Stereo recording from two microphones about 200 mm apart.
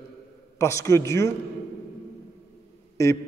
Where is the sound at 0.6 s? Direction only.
15° left (ahead or behind).